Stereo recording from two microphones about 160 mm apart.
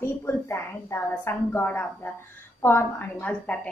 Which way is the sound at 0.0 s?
15° left (ahead or behind).